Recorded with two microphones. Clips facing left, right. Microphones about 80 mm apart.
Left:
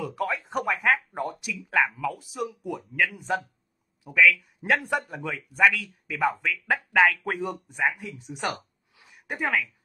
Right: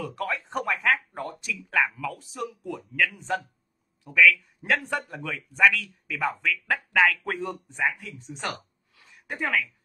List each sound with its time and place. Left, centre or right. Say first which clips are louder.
0.2 s speech: left 1 dB; centre